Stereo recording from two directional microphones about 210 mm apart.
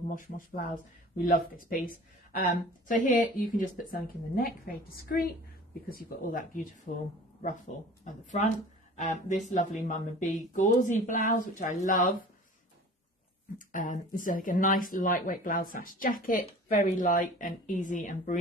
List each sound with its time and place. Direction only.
1.1 s speech: 45° left (ahead or behind)
13.7 s speech: 40° left (ahead or behind)